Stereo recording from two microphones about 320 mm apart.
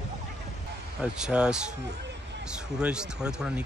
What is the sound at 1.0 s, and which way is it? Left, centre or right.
Speech, centre.